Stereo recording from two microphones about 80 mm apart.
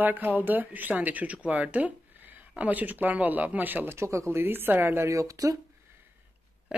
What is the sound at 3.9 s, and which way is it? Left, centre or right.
Speech, right.